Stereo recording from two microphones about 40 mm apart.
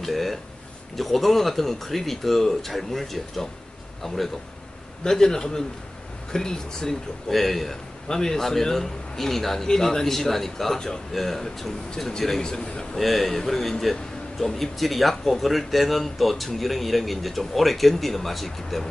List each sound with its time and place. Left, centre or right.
0.0 s a man's voice: centre
8.1 s a man's voice: centre
12.4 s a man's voice: centre
12.9 s speech: centre